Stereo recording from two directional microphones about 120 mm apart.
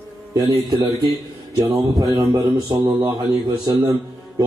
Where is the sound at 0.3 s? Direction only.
30° right (ahead or behind).